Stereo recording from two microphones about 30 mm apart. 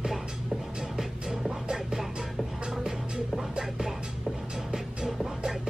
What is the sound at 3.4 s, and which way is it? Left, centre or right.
Music, centre.